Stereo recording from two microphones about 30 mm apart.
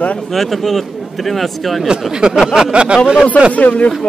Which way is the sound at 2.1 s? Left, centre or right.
Right.